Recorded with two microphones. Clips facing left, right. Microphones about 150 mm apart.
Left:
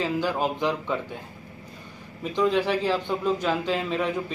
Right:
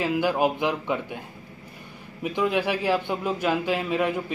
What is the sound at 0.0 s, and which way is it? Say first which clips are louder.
Speech: right 3 dB; 10° right (ahead or behind).